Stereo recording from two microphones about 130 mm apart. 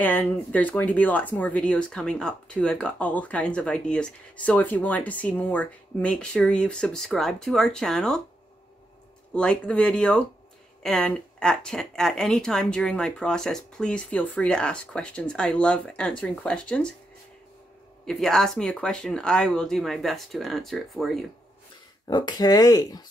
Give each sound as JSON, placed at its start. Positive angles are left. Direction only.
{"t": 0.0, "sound": "speech", "side_deg": 15}
{"t": 9.3, "sound": "speech", "side_deg": 10}
{"t": 18.0, "sound": "speech", "side_deg": 5}
{"t": 22.0, "sound": "speech", "side_deg": 30}